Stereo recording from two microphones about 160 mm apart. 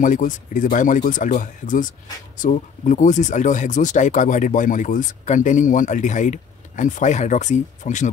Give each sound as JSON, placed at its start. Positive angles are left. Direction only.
{"t": 0.0, "sound": "speech", "side_deg": 55}